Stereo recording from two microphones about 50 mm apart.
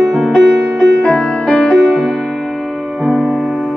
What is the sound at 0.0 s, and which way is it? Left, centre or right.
Music, centre.